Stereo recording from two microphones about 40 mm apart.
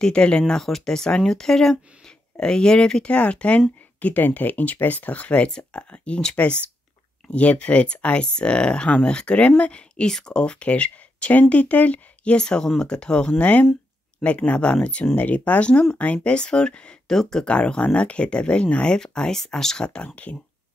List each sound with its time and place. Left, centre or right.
0.0 s speech: left
4.0 s speech: left
12.4 s speech: left
13.4 s speech: left
16.3 s speech: left
17.1 s speech: centre
17.5 s speech: left
19.3 s speech: centre